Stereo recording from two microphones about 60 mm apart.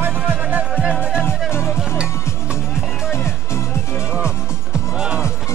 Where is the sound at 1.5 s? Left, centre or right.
Left.